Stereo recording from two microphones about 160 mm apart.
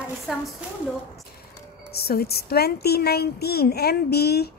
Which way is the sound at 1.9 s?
75° left (ahead or behind).